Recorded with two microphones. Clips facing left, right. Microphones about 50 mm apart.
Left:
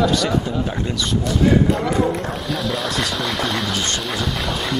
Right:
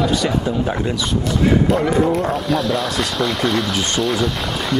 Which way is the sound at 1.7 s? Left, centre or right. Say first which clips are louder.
Right 3 dB; centre.